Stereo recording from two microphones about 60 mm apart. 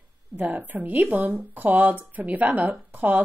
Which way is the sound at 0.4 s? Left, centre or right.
Right.